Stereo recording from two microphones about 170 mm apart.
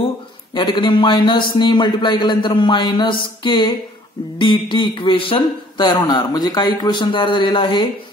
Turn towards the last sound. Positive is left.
turn(degrees=25)  # may be behind; listen again after turning